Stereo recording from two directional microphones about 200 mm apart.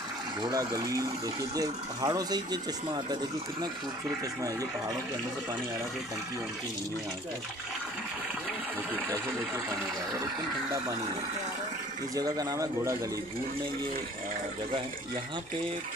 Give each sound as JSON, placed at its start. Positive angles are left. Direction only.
{"t": 0.4, "sound": "speech", "side_deg": -20}
{"t": 12.2, "sound": "speech", "side_deg": -20}